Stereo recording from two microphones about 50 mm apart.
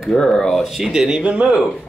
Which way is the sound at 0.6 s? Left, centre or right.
Centre.